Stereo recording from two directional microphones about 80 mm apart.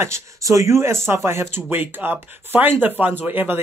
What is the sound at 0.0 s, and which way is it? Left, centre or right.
Speech, right.